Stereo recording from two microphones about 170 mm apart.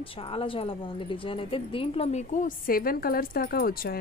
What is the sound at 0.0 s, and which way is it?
A woman's voice, 35° left (ahead or behind).